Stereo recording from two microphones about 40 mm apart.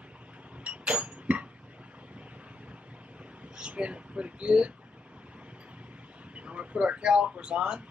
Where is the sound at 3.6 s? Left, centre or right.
Right.